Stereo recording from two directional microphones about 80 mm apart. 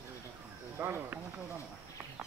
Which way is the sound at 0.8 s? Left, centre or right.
Right.